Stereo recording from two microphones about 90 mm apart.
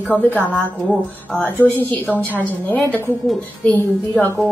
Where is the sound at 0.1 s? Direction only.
15° left (ahead or behind).